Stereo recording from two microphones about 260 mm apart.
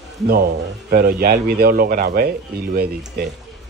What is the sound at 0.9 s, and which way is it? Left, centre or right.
A man's voice, right.